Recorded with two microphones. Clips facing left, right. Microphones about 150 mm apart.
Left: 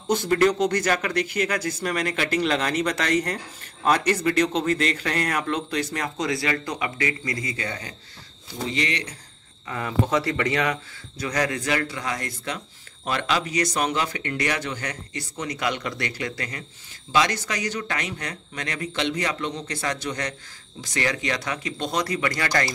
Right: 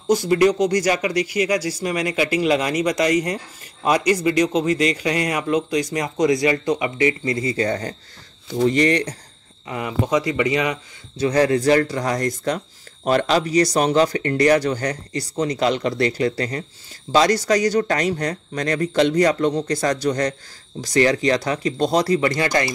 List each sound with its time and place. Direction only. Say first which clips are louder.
0.3 s speech: right 3 dB; 10° right (ahead or behind); by 9.1 s 45° right (ahead or behind)
9.7 s speech: right 3 dB; 15° right (ahead or behind)
11.1 s speech: right 9 dB; 30° right (ahead or behind)